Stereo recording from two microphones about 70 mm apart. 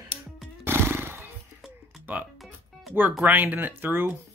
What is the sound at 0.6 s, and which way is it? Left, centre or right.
Horse, right.